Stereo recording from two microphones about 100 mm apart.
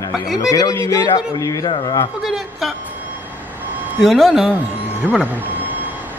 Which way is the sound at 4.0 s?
Centre (ahead or behind).